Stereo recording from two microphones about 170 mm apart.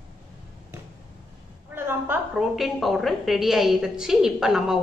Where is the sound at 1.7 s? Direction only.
10° right (ahead or behind).